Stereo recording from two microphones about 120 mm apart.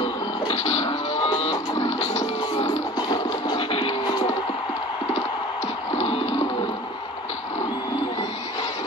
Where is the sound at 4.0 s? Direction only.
35° left (ahead or behind).